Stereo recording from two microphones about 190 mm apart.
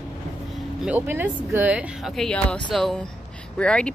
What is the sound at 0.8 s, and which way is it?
A woman's voice, 10° right (ahead or behind).